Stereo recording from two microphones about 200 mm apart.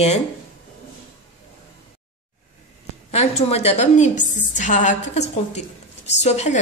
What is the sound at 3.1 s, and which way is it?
A woman's voice, 30° left (ahead or behind).